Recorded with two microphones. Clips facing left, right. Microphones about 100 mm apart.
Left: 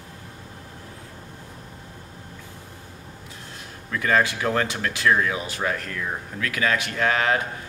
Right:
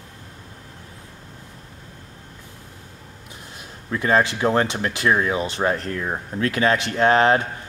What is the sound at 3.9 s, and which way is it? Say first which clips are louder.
Speech: right 2 dB; 25° right (ahead or behind).